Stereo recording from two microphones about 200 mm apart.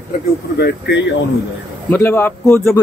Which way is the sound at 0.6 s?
55° left (ahead or behind).